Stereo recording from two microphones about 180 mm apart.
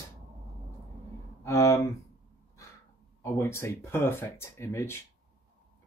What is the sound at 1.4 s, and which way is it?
Speech, 15° left (ahead or behind).